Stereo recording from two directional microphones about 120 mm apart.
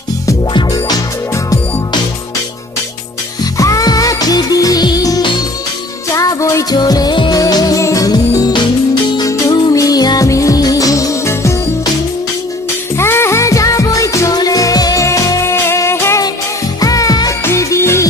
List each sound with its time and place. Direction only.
0.5 s music: 35° left (ahead or behind)
3.5 s music: 30° left (ahead or behind)
12.9 s music: 20° left (ahead or behind)